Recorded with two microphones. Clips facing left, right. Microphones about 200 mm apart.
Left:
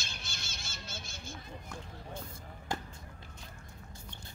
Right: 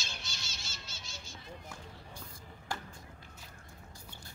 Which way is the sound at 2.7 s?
20° left (ahead or behind).